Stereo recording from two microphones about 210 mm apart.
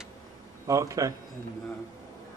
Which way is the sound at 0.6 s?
15° right (ahead or behind).